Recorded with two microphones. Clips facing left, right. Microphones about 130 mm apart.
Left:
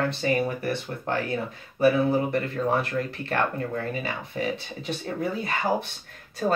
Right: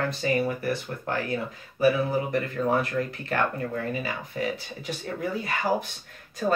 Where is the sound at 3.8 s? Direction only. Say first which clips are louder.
Even; 25° left (ahead or behind).